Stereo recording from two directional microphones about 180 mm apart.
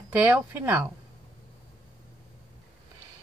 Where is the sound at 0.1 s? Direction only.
10° right (ahead or behind).